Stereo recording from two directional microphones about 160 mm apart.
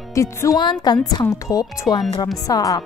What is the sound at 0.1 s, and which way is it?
Speech, 20° left (ahead or behind).